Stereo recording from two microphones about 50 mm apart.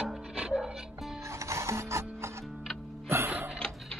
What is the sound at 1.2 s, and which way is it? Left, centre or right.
Music, right.